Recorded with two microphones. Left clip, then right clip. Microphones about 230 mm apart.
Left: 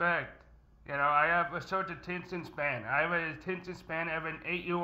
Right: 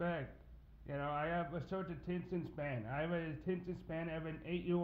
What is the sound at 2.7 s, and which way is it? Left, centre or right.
A man's voice, left.